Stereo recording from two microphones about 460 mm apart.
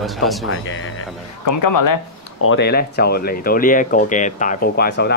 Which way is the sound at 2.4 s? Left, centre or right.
Left.